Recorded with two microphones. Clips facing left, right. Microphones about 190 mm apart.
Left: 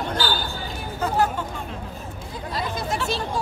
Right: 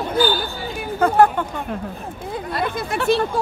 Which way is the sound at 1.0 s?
55° right (ahead or behind).